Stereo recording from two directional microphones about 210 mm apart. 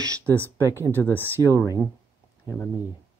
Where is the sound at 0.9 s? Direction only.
10° left (ahead or behind).